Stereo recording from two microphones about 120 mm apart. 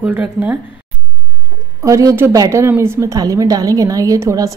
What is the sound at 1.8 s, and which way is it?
A woman's voice, 25° right (ahead or behind).